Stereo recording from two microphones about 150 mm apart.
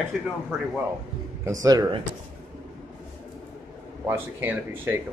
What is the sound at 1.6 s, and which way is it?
Speech, 25° right (ahead or behind).